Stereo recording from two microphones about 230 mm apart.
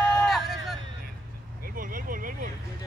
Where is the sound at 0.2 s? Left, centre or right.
Centre.